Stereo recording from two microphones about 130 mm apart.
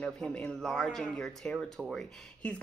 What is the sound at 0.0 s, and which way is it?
Speech, 5° left (ahead or behind).